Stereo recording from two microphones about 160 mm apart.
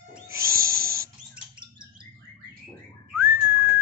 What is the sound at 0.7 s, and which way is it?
Owl, 65° right (ahead or behind).